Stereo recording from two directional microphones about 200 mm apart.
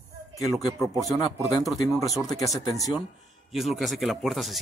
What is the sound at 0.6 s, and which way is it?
Speech, 15° left (ahead or behind).